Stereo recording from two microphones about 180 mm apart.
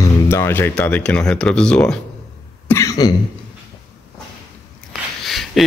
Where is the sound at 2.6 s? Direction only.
15° left (ahead or behind).